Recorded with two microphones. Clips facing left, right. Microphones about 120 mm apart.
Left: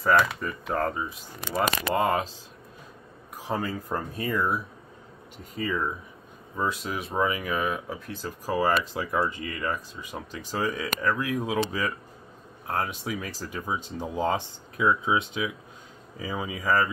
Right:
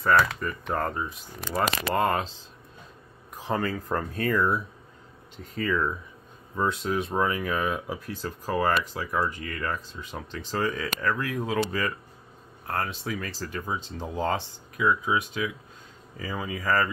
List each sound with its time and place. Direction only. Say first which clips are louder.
0.4 s speech: left 1 dB; 5° left (ahead or behind)
1.4 s speech: even; 15° left (ahead or behind)
3.4 s speech: right 2 dB; 10° left (ahead or behind)
8.5 s speech: left 1 dB; 10° left (ahead or behind)
12.6 s speech: left 1 dB; 15° left (ahead or behind)